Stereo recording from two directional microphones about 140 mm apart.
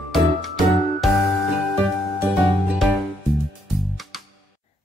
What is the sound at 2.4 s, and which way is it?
Music, centre (ahead or behind).